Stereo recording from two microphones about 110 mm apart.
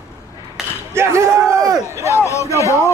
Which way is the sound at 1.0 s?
25° right (ahead or behind).